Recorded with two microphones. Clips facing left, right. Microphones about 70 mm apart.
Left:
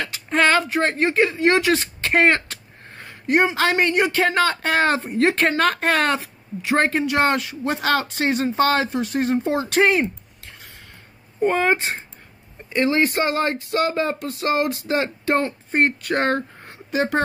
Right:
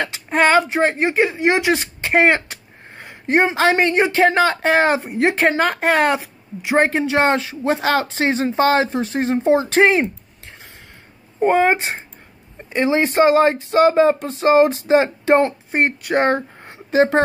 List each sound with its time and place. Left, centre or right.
0.0 s speech: right
3.3 s a woman's voice: right
11.4 s a woman's voice: right
15.7 s speech: centre